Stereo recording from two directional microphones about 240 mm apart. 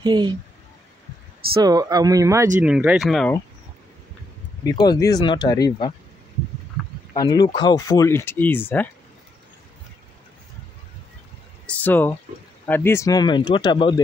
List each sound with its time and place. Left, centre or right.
0.0 s speech: centre
1.6 s speech: centre
4.6 s speech: centre
7.2 s speech: centre
11.6 s a sound: centre
12.6 s speech: centre